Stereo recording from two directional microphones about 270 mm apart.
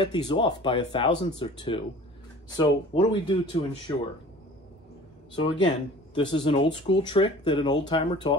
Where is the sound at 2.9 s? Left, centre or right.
Centre.